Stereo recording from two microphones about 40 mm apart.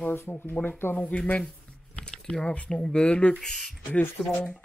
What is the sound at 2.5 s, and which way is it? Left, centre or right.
Speech, left.